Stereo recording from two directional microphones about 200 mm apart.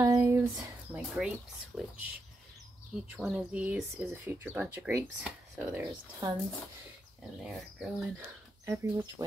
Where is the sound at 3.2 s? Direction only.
5° right (ahead or behind).